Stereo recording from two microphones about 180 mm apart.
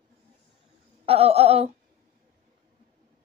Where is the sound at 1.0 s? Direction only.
35° right (ahead or behind).